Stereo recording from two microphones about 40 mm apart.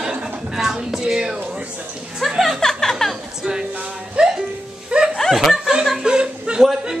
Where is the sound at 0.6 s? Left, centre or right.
Centre.